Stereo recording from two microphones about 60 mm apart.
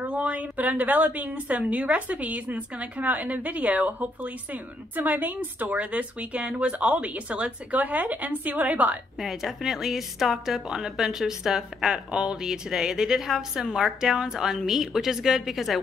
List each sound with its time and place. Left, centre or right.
0.0 s a woman's voice: right
9.2 s a woman's voice: centre